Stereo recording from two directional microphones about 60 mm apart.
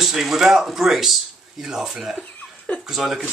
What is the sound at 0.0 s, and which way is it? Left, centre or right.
Speech, centre.